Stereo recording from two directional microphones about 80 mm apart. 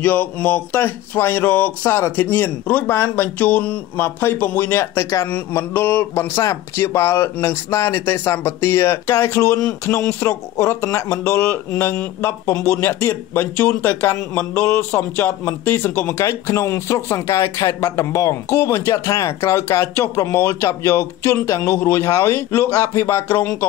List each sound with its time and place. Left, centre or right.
0.0 s speech: left
3.9 s speech: left
16.2 s speech: left
19.4 s speech: left